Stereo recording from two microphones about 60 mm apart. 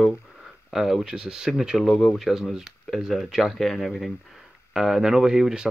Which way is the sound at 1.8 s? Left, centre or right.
Centre.